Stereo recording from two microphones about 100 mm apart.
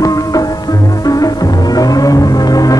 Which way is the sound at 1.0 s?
35° left (ahead or behind).